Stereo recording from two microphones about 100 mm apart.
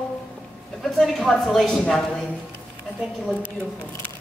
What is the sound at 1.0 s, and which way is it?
A man's voice, 5° left (ahead or behind).